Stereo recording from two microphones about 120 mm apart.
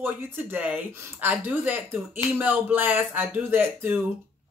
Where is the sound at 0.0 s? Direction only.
15° right (ahead or behind).